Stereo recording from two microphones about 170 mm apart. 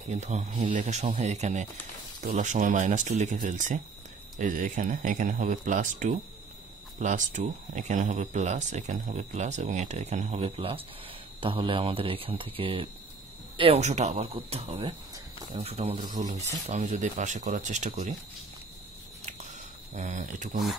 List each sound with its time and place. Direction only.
0.1 s speech: 40° right (ahead or behind)
19.9 s speech: 45° right (ahead or behind)